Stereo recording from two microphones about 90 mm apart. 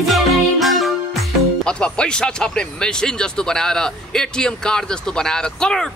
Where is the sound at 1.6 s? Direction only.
10° left (ahead or behind).